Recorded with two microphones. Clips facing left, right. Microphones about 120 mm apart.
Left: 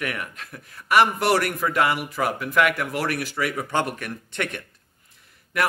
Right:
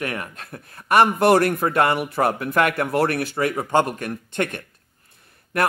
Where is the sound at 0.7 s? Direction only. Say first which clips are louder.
Right 2 dB; 50° right (ahead or behind).